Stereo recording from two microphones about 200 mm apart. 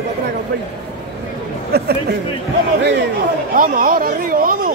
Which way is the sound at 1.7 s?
50° right (ahead or behind).